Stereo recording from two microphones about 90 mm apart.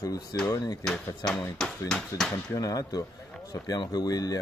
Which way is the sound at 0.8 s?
5° left (ahead or behind).